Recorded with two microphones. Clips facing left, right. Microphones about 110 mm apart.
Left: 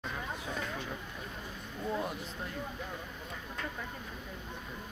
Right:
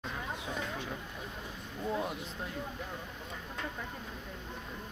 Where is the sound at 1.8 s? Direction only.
Centre (ahead or behind).